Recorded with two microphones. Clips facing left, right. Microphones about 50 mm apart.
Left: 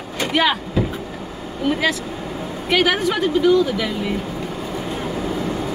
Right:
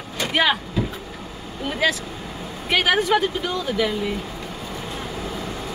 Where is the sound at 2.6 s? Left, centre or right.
Centre.